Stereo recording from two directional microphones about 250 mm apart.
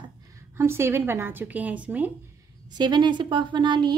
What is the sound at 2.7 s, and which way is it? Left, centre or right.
Speech, centre.